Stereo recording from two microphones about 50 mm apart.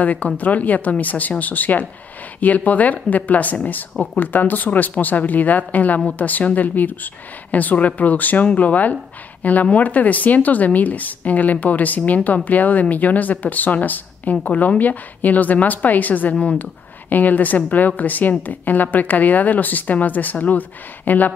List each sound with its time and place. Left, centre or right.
0.0 s speech: left